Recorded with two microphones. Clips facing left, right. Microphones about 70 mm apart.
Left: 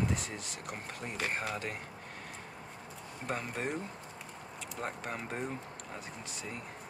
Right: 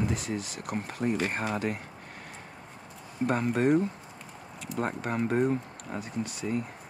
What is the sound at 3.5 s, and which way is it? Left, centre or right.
Speech, right.